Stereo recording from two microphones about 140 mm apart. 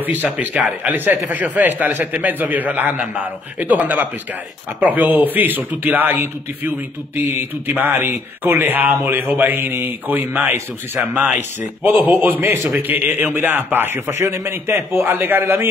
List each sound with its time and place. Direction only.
0.0 s a man's voice: 10° right (ahead or behind)